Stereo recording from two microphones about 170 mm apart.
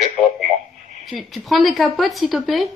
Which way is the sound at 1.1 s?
Centre (ahead or behind).